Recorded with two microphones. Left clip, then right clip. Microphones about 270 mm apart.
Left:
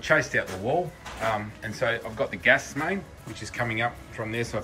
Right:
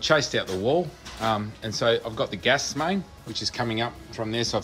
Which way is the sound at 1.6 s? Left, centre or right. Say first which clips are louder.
Right 4 dB; centre.